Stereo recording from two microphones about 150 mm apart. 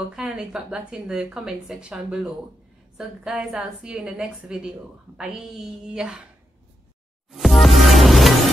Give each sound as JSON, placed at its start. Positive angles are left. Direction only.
{"t": 0.1, "sound": "a woman's voice", "side_deg": -5}
{"t": 7.3, "sound": "music", "side_deg": 0}